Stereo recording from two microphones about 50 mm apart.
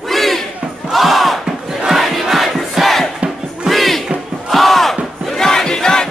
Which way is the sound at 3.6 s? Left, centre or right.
Centre.